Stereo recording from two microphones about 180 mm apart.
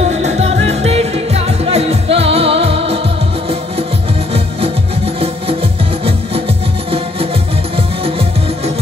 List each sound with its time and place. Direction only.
0.1 s music: 40° right (ahead or behind)
4.3 s music: 30° right (ahead or behind)
7.7 s music: 30° right (ahead or behind)